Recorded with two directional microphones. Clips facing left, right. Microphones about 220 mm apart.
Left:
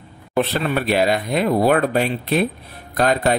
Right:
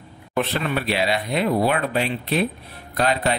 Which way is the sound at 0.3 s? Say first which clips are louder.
Left 3 dB; 35° left (ahead or behind).